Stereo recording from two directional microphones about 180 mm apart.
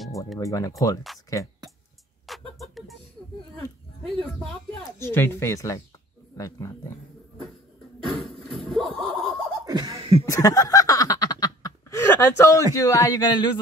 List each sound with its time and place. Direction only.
0.4 s speech: 20° left (ahead or behind)
2.2 s music: centre (ahead or behind)
3.5 s speech: 30° right (ahead or behind)
4.9 s speech: 15° left (ahead or behind)
8.0 s music: 30° right (ahead or behind)
8.6 s slap: centre (ahead or behind)
8.9 s a sound: 25° right (ahead or behind)
9.9 s chuckle: 30° right (ahead or behind)
10.2 s snicker: 20° left (ahead or behind)
12.7 s speech: 20° left (ahead or behind)